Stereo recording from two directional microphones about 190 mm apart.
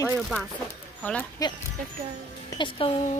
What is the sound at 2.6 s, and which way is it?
Speech, 30° left (ahead or behind).